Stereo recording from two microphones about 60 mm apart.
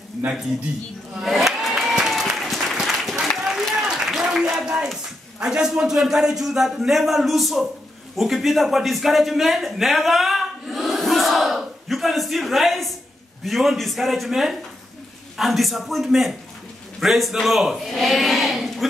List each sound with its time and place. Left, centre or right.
1.2 s crowd: centre
2.0 s applause: centre
5.4 s a man's voice: centre